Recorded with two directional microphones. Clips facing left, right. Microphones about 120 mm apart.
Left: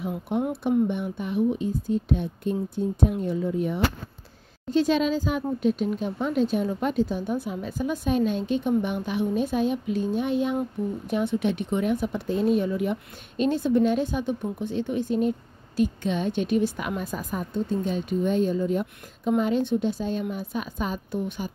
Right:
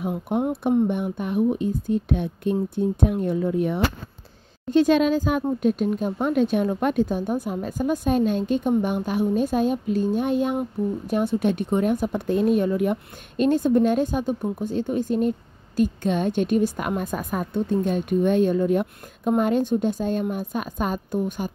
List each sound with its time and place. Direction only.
0.3 s a woman's voice: 50° right (ahead or behind)